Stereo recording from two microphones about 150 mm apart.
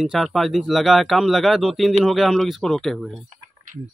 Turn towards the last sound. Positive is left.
turn(degrees=0)  # may be behind; listen again after turning